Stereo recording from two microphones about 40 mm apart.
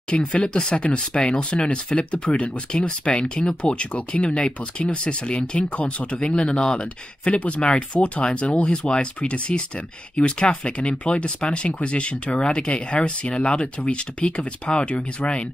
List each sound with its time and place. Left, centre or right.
0.1 s speech: left
8.6 s speech: centre